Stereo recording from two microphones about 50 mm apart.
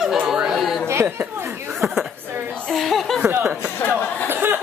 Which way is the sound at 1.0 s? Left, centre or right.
Right.